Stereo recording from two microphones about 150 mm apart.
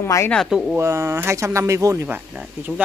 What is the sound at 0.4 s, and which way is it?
Speech, centre (ahead or behind).